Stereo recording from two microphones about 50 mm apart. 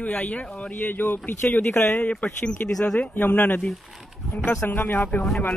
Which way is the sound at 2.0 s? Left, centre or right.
Left.